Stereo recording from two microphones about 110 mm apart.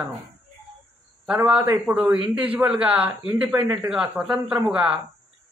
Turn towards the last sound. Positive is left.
turn(degrees=-10)  # may be behind; listen again after turning